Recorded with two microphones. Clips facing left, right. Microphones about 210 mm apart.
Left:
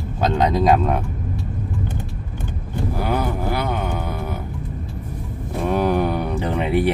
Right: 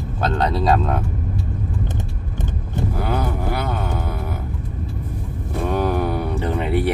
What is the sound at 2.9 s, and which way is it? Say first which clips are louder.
Music: left 3 dB; 10° left (ahead or behind).